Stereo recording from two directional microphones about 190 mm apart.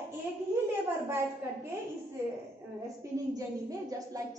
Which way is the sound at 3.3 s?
20° right (ahead or behind).